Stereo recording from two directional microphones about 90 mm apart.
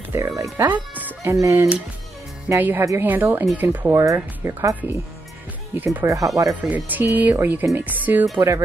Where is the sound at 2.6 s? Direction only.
20° right (ahead or behind).